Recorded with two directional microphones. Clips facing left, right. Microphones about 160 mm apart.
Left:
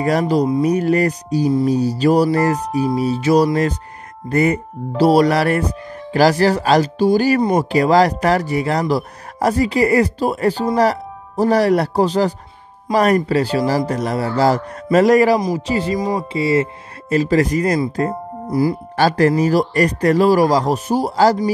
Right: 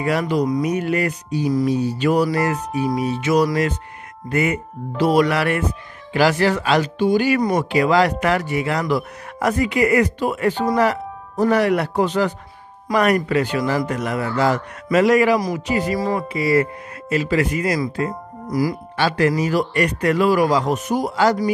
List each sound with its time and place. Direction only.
0.0 s speech: 40° left (ahead or behind)
16.0 s speech: 15° left (ahead or behind)
17.1 s speech: 35° left (ahead or behind)
18.9 s speech: 40° left (ahead or behind)